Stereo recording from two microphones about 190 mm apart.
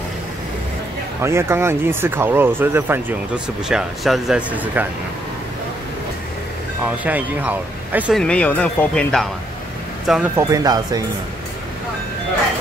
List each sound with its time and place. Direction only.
1.2 s speech: 15° right (ahead or behind)
7.1 s speech: 10° right (ahead or behind)
8.2 s speech: 5° left (ahead or behind)
10.3 s speech: 20° right (ahead or behind)